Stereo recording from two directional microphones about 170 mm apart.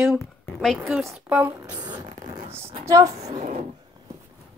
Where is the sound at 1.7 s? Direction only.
25° right (ahead or behind).